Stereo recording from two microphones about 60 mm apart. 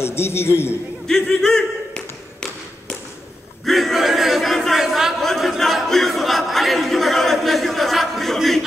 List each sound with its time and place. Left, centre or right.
0.0 s a man's voice: left
1.0 s a sound: centre
3.6 s battle cry: centre
5.2 s crowd: centre